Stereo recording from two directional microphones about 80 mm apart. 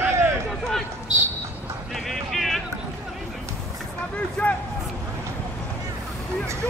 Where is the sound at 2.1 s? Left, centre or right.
Centre.